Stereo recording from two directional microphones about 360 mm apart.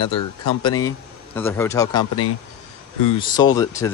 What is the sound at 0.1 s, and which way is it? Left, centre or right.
Speech, left.